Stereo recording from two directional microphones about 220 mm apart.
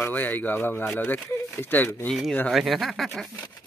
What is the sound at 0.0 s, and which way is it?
Speech, 10° left (ahead or behind).